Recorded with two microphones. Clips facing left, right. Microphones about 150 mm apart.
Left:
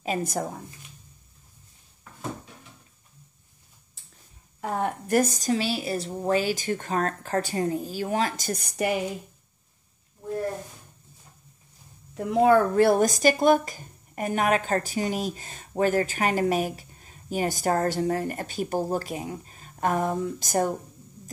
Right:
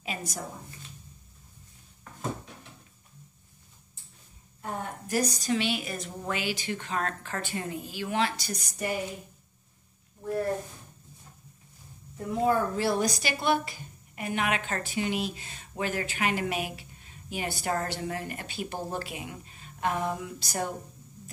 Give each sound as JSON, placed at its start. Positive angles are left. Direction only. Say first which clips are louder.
{"t": 0.0, "sound": "speech", "louder": "left 9 dB", "side_deg": 50}
{"t": 4.6, "sound": "speech", "louder": "left 8 dB", "side_deg": 80}
{"t": 12.1, "sound": "speech", "louder": "left 7 dB", "side_deg": 80}